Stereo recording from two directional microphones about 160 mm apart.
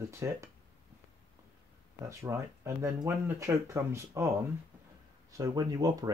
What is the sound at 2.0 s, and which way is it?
Speech, 20° right (ahead or behind).